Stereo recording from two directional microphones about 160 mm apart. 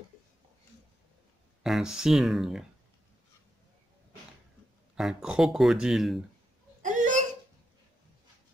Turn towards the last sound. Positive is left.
turn(degrees=-50)  # may be behind; listen again after turning